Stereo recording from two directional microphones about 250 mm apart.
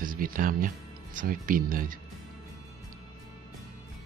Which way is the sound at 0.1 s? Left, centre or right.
Right.